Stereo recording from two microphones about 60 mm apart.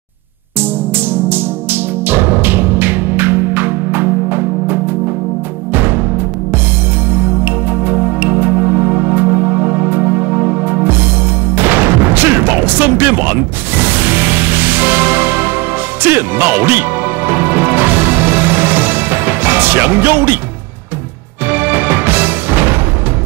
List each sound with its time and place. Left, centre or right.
0.9 s music: right
7.1 s music: right
16.0 s speech: right
17.3 s music: right
21.5 s music: right